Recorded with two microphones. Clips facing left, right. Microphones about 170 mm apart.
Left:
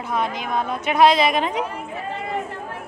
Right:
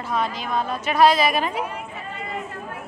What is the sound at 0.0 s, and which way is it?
Speech, 15° left (ahead or behind).